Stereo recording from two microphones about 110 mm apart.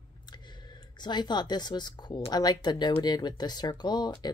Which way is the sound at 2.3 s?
40° left (ahead or behind).